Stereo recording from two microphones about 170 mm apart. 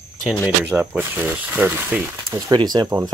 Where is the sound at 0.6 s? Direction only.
10° right (ahead or behind).